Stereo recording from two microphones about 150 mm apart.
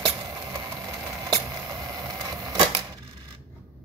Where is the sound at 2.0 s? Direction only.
25° right (ahead or behind).